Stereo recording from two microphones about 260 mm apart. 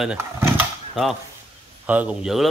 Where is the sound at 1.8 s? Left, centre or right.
Centre.